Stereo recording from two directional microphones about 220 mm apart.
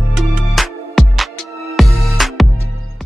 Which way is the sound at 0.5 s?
Centre (ahead or behind).